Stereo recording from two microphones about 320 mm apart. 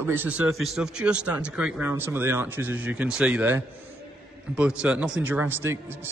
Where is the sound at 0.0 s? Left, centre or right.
Centre.